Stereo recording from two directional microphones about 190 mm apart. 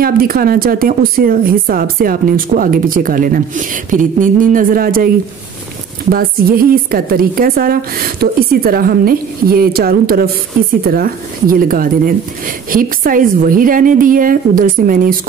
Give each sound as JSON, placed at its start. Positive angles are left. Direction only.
{"t": 0.0, "sound": "a woman's voice", "side_deg": -50}
{"t": 6.1, "sound": "a woman's voice", "side_deg": -50}